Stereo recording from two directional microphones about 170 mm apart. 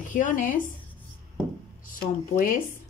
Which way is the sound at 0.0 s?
50° left (ahead or behind).